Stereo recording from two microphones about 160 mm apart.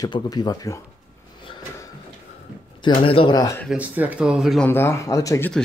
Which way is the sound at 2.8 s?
30° left (ahead or behind).